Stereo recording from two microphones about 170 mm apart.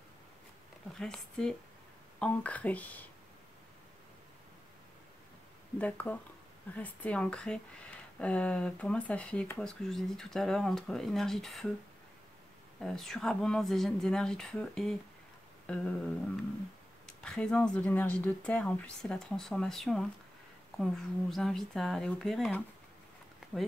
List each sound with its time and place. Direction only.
0.9 s speech: 5° left (ahead or behind)
5.8 s speech: 10° left (ahead or behind)
12.8 s speech: centre (ahead or behind)
15.6 s a sound: 5° left (ahead or behind)
17.2 s speech: 5° left (ahead or behind)
23.4 s a sound: 5° right (ahead or behind)